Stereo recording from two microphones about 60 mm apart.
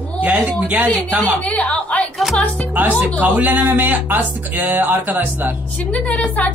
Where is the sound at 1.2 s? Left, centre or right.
Left.